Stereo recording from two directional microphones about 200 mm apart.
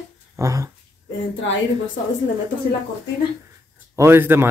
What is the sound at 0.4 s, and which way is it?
Speech, 15° right (ahead or behind).